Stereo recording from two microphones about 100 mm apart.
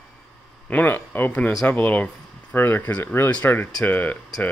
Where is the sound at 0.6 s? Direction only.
15° left (ahead or behind).